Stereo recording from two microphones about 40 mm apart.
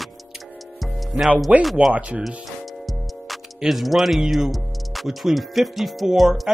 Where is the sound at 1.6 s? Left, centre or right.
Centre.